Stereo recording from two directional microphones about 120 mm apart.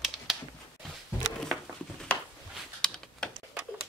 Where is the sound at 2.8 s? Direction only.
5° left (ahead or behind).